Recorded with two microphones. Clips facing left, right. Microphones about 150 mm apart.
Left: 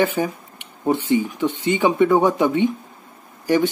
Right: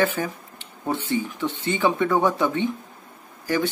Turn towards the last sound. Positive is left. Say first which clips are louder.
# left 6 dB
turn(degrees=15)  # may be behind; listen again after turning